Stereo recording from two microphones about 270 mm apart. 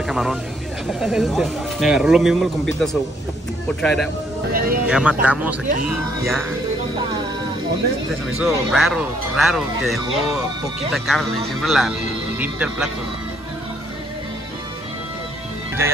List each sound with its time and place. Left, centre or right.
0.0 s vehicle: centre
0.8 s speech: centre
4.5 s speech: right
4.8 s speech: centre
8.4 s speech: centre